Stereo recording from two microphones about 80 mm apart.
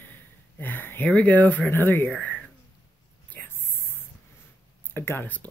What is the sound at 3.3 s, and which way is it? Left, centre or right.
Whispering, left.